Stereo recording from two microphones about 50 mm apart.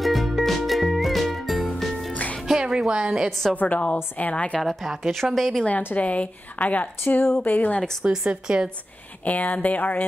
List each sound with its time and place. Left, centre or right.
0.0 s music: centre
2.4 s music: centre
3.5 s a woman's voice: left
5.1 s a woman's voice: centre
5.9 s a woman's voice: left
7.2 s speech: left
7.5 s speech: left
8.0 s a woman's voice: centre
9.2 s speech: left